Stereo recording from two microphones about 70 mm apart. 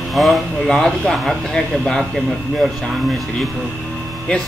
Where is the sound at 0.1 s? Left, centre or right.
Centre.